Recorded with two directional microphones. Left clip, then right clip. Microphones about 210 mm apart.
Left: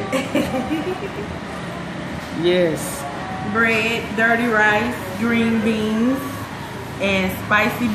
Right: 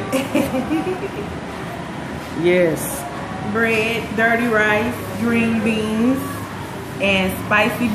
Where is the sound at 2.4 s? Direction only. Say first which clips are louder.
Right 2 dB; centre (ahead or behind).